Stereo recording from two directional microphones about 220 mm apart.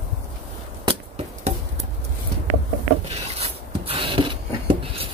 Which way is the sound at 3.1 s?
25° right (ahead or behind).